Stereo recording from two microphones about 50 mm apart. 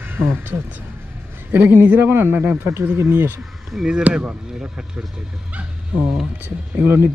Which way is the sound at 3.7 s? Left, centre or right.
Centre.